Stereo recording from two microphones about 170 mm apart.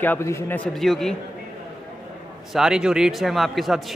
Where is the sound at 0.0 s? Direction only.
15° left (ahead or behind).